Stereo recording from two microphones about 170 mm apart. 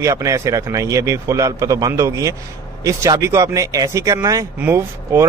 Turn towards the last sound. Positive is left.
turn(degrees=-15)  # may be behind; listen again after turning